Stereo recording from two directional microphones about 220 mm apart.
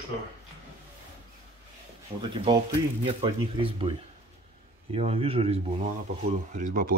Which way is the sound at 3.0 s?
25° right (ahead or behind).